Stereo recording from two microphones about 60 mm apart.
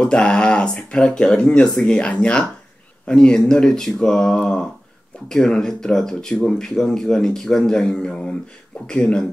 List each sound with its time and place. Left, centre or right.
0.0 s a man's voice: centre